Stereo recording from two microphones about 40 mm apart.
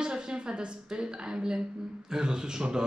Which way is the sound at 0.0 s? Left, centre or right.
Right.